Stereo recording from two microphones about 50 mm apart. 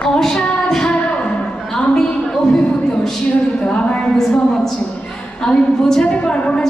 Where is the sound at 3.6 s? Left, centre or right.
Left.